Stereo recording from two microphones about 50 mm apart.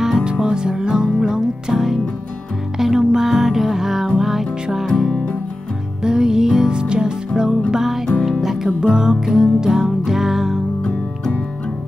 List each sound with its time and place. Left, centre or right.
0.0 s music: centre
4.8 s music: centre
6.0 s music: centre